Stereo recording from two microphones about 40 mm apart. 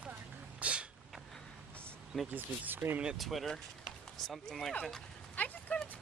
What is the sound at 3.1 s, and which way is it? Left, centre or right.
A man's voice, centre.